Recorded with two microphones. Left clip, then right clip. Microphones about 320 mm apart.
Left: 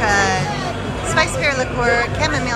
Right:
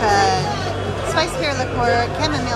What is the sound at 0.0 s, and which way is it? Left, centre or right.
Music, centre.